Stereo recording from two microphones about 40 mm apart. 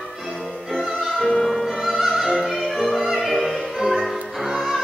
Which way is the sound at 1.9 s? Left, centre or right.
Centre.